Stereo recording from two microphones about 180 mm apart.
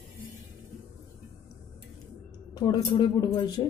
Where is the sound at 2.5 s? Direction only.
25° left (ahead or behind).